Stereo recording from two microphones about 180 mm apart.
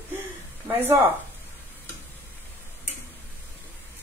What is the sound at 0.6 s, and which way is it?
Speech, 15° right (ahead or behind).